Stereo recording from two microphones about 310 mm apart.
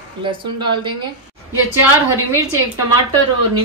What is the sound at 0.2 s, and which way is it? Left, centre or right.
Speech, centre.